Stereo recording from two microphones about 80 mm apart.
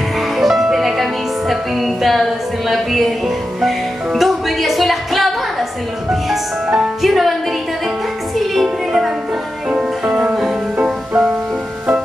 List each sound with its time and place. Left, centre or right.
0.4 s music: centre
6.8 s music: centre
8.4 s music: centre